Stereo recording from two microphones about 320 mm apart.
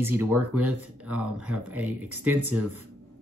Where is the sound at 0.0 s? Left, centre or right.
Centre.